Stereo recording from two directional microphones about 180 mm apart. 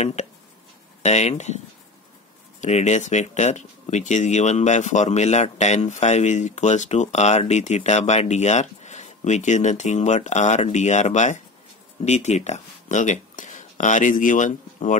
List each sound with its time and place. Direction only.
0.0 s speech: 40° left (ahead or behind)
2.6 s speech: 40° left (ahead or behind)